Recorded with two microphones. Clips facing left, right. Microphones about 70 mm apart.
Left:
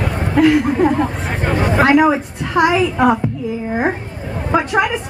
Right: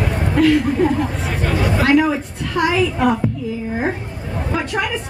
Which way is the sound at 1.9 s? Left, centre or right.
Left.